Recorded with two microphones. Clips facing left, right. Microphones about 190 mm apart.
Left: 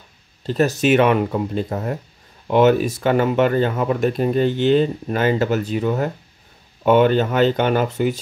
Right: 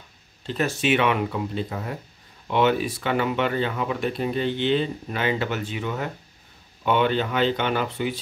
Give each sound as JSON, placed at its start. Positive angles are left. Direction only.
{"t": 0.5, "sound": "speech", "side_deg": 40}